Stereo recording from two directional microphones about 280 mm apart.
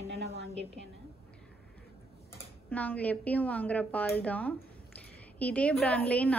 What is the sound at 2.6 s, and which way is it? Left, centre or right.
Speech, centre.